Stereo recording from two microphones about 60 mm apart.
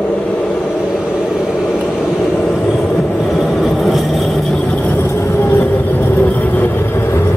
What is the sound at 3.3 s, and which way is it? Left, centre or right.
Vehicle, centre.